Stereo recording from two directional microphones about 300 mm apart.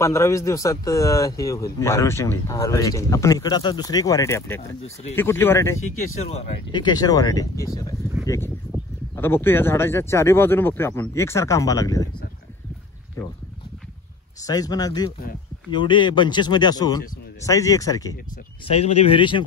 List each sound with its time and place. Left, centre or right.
0.0 s a man's voice: centre
5.9 s a man's voice: left
9.1 s a man's voice: centre
13.2 s a man's voice: centre
14.4 s a man's voice: centre